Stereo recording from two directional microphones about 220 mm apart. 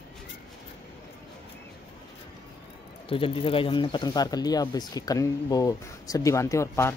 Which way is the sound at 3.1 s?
25° left (ahead or behind).